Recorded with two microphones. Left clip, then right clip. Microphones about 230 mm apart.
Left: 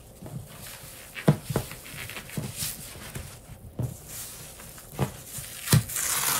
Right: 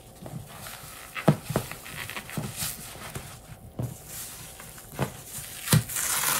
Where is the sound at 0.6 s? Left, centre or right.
Centre.